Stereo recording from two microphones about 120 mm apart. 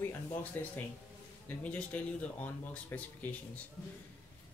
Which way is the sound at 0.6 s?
15° left (ahead or behind).